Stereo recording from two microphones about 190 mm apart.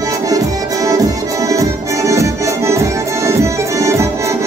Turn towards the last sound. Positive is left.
turn(degrees=-15)  # may be behind; listen again after turning